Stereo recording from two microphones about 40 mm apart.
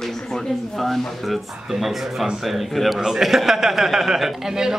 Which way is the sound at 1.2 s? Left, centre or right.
Centre.